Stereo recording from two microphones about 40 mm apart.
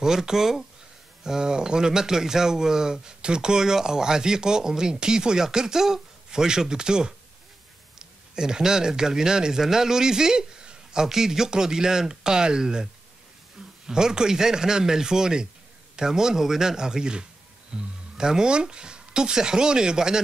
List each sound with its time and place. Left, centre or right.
0.0 s speech: centre